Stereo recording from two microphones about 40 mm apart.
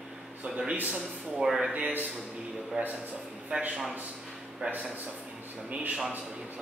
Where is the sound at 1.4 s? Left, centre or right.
Centre.